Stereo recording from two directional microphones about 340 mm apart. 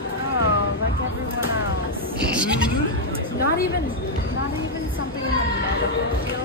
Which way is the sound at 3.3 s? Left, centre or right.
Left.